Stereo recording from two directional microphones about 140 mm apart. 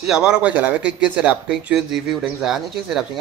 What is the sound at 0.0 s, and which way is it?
Speech, 5° right (ahead or behind).